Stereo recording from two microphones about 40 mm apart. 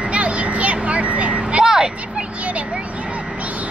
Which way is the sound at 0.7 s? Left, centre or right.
Right.